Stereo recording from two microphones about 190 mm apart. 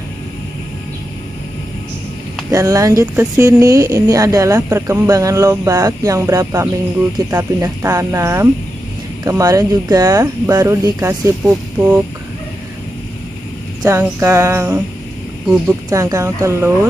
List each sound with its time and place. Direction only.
2.5 s speech: 15° right (ahead or behind)
13.8 s speech: 15° right (ahead or behind)
15.9 s speech: 15° right (ahead or behind)